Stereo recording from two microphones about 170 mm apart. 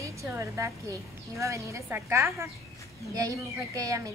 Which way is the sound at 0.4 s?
20° right (ahead or behind).